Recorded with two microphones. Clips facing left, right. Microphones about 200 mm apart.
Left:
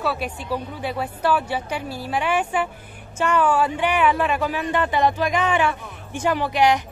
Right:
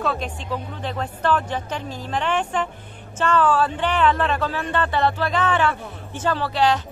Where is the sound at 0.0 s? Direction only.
10° left (ahead or behind).